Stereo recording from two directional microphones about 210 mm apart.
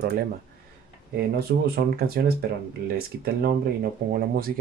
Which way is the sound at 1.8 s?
50° right (ahead or behind).